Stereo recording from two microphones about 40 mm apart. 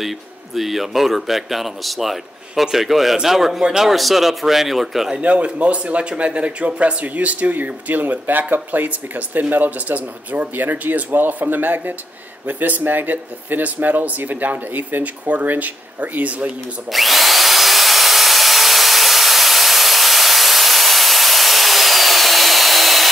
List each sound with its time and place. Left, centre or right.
0.6 s speech: centre
5.2 s speech: right
16.9 s tools: centre